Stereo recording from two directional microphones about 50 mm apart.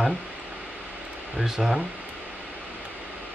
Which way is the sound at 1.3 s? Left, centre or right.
Centre.